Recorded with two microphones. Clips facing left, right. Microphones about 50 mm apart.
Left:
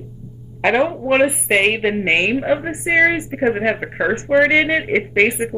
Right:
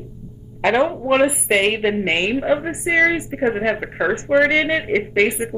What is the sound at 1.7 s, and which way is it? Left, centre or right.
Speech, centre.